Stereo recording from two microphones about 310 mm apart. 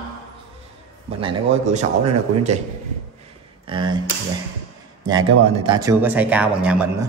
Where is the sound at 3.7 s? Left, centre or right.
Centre.